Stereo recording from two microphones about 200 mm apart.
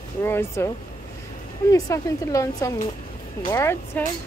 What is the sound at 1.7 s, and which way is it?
A woman's voice, 15° left (ahead or behind).